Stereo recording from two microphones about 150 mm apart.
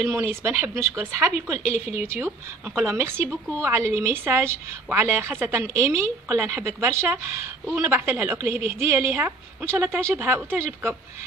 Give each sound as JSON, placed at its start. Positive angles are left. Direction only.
{"t": 0.0, "sound": "a woman's voice", "side_deg": -15}